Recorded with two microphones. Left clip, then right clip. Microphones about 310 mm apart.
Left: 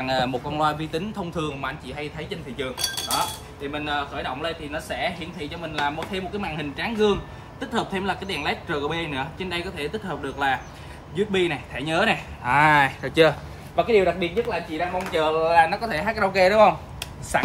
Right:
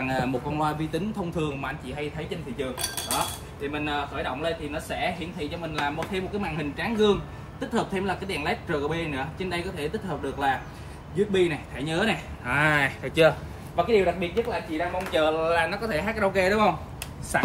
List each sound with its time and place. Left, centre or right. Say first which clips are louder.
0.0 s speech: left 3 dB; centre